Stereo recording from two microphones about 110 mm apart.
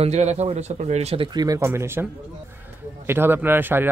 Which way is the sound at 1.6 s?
25° right (ahead or behind).